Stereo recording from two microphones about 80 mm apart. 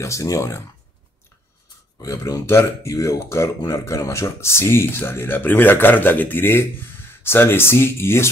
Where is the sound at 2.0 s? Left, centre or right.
Left.